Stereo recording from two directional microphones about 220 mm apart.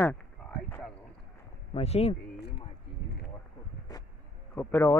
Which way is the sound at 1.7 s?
30° left (ahead or behind).